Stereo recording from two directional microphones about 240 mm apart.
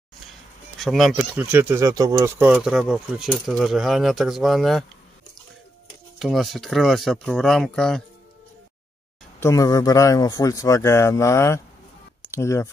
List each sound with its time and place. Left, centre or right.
0.7 s speech: centre
6.1 s speech: centre
9.4 s speech: centre
12.2 s clicking: centre